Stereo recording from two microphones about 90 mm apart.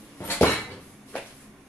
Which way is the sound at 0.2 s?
20° left (ahead or behind).